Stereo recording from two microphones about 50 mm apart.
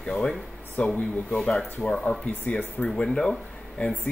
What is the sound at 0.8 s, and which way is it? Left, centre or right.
Speech, left.